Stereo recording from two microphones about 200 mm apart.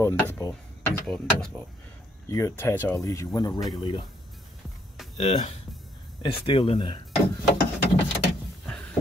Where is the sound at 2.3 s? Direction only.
15° left (ahead or behind).